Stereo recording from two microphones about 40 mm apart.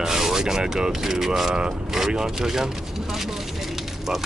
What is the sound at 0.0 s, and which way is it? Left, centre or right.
Speech, centre.